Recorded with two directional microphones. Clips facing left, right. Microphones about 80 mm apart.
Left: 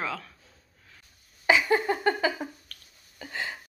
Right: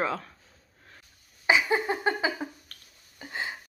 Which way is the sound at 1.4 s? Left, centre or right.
Centre.